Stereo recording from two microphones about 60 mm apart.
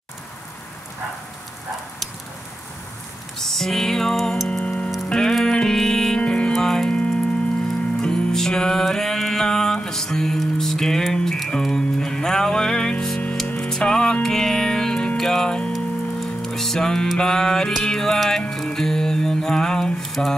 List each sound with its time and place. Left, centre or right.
3.3 s music: centre
4.5 s music: centre
18.5 s mantra: centre